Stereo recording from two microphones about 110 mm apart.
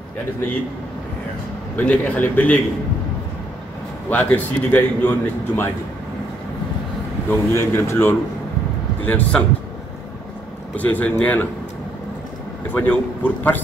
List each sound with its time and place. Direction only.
1.8 s a man's voice: 15° left (ahead or behind)
4.1 s a man's voice: 15° left (ahead or behind)
7.2 s a man's voice: 25° left (ahead or behind)
10.8 s a man's voice: 15° left (ahead or behind)
12.7 s a man's voice: 15° left (ahead or behind)